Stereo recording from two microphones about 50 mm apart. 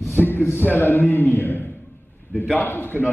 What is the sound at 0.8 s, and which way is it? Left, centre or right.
A man's voice, left.